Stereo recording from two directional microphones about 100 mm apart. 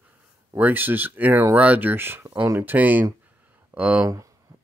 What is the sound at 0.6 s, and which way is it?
Speech, 20° right (ahead or behind).